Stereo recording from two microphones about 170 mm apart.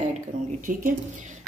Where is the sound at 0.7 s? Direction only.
50° right (ahead or behind).